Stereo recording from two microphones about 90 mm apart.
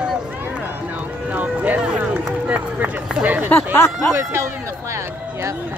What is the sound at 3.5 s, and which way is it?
Speech, 25° left (ahead or behind).